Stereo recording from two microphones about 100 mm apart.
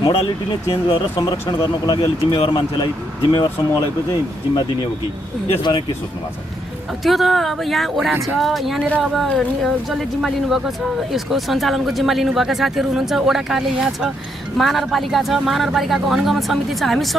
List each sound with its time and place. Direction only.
0.0 s speech: 45° left (ahead or behind)
2.3 s speech: 70° left (ahead or behind)
3.3 s speech: 40° left (ahead or behind)
7.0 s speech: centre (ahead or behind)